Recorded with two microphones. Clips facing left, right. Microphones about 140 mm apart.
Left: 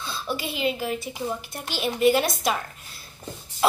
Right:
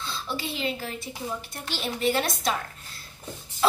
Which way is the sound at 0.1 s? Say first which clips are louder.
Left 4 dB; 5° left (ahead or behind).